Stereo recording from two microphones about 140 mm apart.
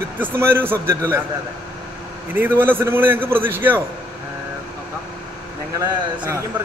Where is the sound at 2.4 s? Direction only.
15° right (ahead or behind).